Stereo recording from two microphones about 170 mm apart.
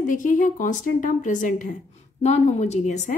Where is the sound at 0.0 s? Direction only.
50° left (ahead or behind).